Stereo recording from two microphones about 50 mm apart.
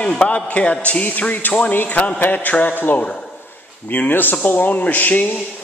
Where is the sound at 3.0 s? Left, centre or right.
Centre.